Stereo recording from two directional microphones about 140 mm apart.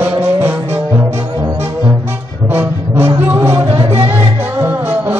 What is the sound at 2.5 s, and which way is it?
Music, 15° right (ahead or behind).